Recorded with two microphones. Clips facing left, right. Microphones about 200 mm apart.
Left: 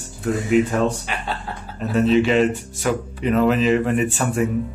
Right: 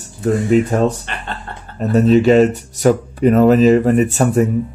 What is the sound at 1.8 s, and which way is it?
Speech, 40° right (ahead or behind).